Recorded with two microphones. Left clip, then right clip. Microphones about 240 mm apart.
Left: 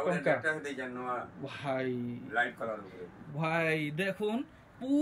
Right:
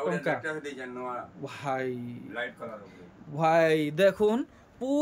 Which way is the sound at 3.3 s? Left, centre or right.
Centre.